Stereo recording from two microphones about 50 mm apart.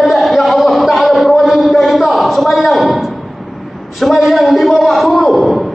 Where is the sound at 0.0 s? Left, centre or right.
Centre.